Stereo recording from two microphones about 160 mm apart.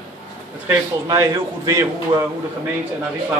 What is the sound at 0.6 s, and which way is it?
A man's voice, 20° right (ahead or behind).